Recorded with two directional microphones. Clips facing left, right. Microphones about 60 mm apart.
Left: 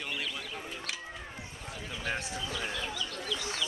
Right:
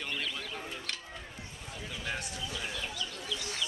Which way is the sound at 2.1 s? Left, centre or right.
Left.